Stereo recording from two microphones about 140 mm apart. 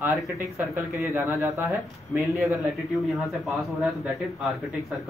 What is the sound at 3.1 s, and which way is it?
A man's voice, centre (ahead or behind).